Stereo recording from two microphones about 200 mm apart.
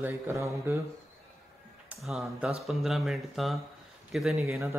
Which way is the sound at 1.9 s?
5° right (ahead or behind).